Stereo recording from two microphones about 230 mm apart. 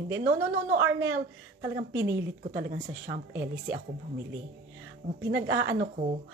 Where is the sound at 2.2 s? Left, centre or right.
Right.